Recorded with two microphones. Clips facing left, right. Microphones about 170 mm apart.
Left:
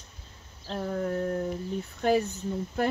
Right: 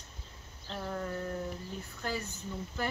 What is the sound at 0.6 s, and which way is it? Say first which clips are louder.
Speech: left 7 dB; 65° left (ahead or behind).